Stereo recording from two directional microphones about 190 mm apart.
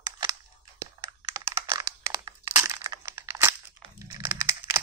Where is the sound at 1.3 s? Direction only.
15° right (ahead or behind).